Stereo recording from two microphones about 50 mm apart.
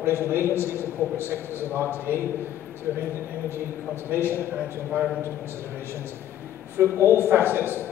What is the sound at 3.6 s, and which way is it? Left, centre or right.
Speech, right.